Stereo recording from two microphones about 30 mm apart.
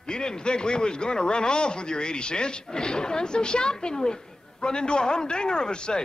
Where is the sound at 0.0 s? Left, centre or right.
Left.